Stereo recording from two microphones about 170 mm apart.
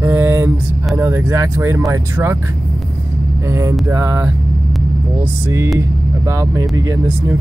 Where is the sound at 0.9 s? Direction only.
15° right (ahead or behind).